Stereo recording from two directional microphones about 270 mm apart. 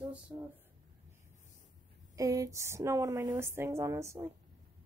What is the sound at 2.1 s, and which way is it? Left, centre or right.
A woman's voice, centre.